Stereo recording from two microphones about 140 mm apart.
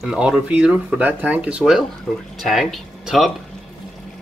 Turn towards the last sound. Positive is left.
turn(degrees=0)  # may be behind; listen again after turning